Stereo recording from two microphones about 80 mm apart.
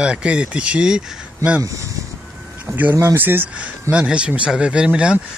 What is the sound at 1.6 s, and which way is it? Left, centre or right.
Speech, right.